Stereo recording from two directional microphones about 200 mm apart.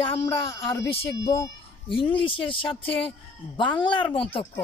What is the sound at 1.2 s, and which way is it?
A child's voice, 15° left (ahead or behind).